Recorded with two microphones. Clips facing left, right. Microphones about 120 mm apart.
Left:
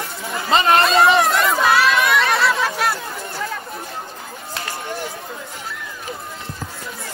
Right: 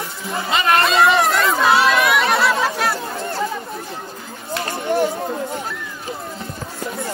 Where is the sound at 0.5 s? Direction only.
30° left (ahead or behind).